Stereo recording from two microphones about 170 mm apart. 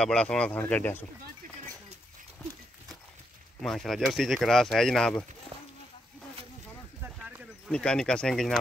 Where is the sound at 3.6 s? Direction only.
5° left (ahead or behind).